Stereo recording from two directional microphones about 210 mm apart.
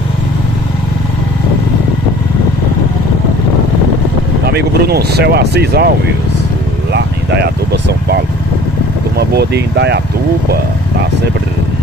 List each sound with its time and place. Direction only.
4.5 s speech: 50° right (ahead or behind)
9.3 s speech: 50° right (ahead or behind)